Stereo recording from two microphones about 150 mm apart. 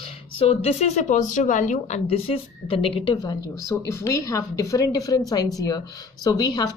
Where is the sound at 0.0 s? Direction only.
40° left (ahead or behind); by 2.0 s 55° left (ahead or behind).